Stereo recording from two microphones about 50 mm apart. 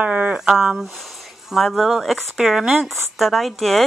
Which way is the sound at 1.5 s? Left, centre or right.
Centre.